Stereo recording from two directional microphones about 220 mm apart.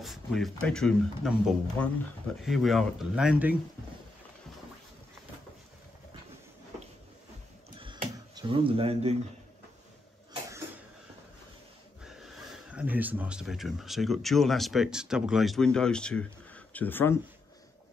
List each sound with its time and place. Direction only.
0.0 s speech: centre (ahead or behind)
7.8 s a sound: 20° right (ahead or behind)
12.0 s speech: centre (ahead or behind)